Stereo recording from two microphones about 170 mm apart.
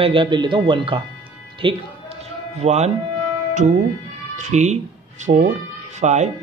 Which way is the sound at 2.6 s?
40° right (ahead or behind).